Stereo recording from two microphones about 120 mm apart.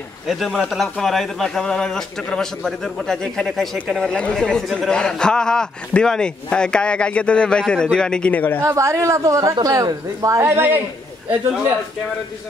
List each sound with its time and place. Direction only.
0.3 s a man's voice: centre (ahead or behind)
8.6 s a man's voice: 25° right (ahead or behind)